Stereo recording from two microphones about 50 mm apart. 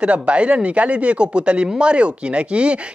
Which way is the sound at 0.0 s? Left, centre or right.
Right.